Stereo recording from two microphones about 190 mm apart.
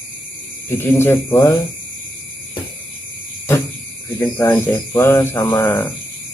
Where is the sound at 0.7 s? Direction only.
10° left (ahead or behind).